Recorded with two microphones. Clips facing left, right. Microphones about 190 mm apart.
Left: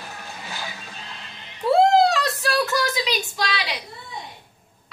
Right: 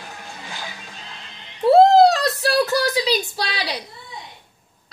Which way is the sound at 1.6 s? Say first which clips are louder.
Right 5 dB; 35° right (ahead or behind).